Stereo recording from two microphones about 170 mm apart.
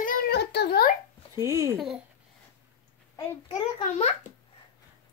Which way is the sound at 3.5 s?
35° left (ahead or behind).